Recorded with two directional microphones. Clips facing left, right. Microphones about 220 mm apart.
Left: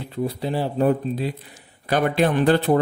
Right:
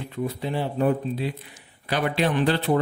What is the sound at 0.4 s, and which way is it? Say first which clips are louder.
Speech: left 3 dB; 35° left (ahead or behind).